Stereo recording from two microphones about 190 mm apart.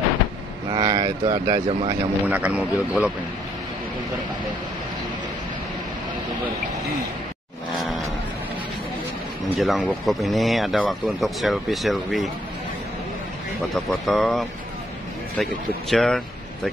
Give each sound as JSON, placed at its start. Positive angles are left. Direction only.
{"t": 0.7, "sound": "speech", "side_deg": -25}
{"t": 2.2, "sound": "speech", "side_deg": -10}
{"t": 7.7, "sound": "a sound", "side_deg": 0}
{"t": 9.6, "sound": "speech", "side_deg": 0}
{"t": 13.6, "sound": "speech", "side_deg": 0}
{"t": 15.9, "sound": "speech", "side_deg": 0}